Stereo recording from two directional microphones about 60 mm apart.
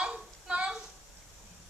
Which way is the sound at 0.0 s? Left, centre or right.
Centre.